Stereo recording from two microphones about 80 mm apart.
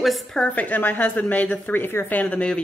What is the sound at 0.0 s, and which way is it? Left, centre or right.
Speech, centre.